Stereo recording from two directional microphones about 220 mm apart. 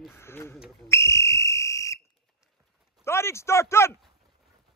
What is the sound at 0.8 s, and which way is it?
Whistle, 10° left (ahead or behind).